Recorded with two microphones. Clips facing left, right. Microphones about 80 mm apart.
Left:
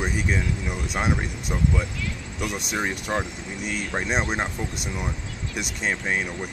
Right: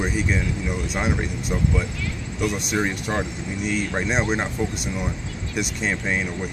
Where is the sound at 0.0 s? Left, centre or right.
Centre.